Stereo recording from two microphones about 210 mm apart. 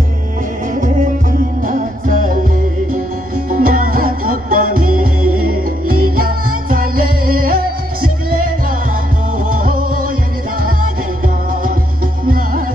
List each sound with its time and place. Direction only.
0.7 s music: 40° right (ahead or behind)
3.4 s music: 40° right (ahead or behind)
5.2 s music: 90° right
6.1 s music: 45° right (ahead or behind)
9.5 s music: 40° right (ahead or behind)
12.3 s music: 40° right (ahead or behind)